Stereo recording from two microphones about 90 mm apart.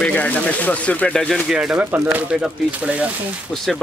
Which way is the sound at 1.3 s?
5° right (ahead or behind).